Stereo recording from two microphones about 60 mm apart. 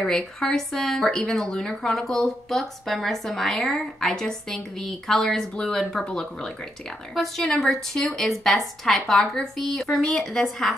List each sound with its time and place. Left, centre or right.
0.0 s a woman's voice: centre